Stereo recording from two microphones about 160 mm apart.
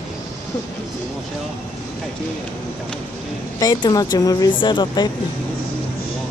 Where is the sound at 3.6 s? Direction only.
25° left (ahead or behind).